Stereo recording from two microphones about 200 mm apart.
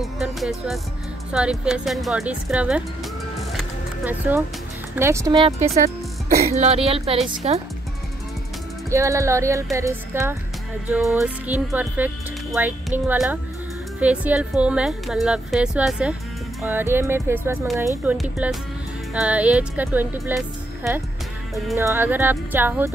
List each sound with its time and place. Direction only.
0.0 s music: centre (ahead or behind)
1.3 s a woman's voice: 5° right (ahead or behind)
3.5 s a sound: 10° right (ahead or behind)
4.9 s speech: 15° right (ahead or behind)
6.2 s speech: 40° right (ahead or behind)
8.9 s speech: 15° right (ahead or behind)
10.9 s a woman's voice: centre (ahead or behind)